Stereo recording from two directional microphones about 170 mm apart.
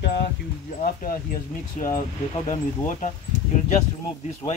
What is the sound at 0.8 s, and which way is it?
Speech, 55° left (ahead or behind).